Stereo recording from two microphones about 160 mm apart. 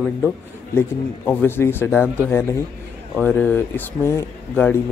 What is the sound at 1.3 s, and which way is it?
Speech, 10° left (ahead or behind).